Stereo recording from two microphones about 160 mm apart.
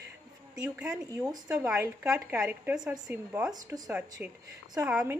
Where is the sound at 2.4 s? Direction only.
5° right (ahead or behind); by 3.9 s 25° right (ahead or behind).